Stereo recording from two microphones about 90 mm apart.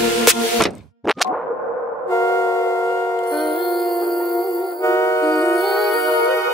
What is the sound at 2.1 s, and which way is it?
Music, 30° left (ahead or behind).